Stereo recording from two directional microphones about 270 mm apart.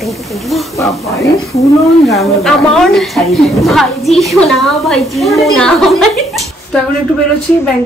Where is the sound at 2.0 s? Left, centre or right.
Centre.